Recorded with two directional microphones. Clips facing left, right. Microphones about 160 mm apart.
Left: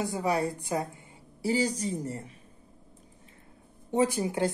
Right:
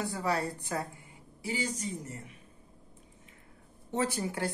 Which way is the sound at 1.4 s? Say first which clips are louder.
Left 7 dB; 35° left (ahead or behind).